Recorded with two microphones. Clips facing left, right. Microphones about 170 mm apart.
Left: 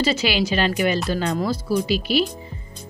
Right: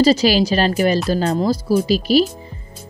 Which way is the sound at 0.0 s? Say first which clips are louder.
Right 7 dB; 35° right (ahead or behind).